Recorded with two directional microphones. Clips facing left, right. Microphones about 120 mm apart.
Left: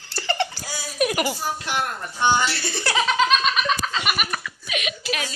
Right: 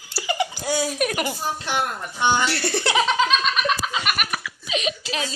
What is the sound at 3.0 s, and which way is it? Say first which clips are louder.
Giggle: left 3 dB; centre (ahead or behind).